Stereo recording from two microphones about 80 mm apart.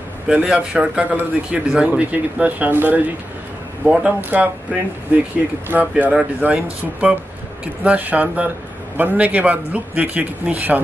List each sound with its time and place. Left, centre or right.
0.3 s speech: centre
3.8 s speech: centre
4.2 s a man's voice: right
5.7 s a man's voice: centre